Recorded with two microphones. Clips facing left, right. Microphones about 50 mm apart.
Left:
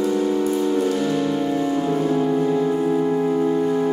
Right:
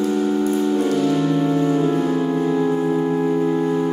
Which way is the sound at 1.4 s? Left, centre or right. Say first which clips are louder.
Right 3 dB; right.